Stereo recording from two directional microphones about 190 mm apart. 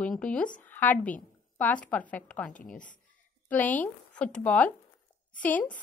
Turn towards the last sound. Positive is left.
turn(degrees=10)  # may be behind; listen again after turning